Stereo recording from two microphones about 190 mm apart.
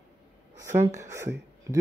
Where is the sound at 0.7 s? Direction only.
15° right (ahead or behind).